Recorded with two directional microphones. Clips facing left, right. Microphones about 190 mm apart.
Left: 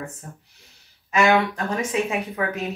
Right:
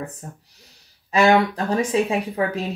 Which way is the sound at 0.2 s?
25° right (ahead or behind).